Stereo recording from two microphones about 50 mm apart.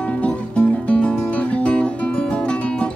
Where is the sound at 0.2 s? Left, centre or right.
Left.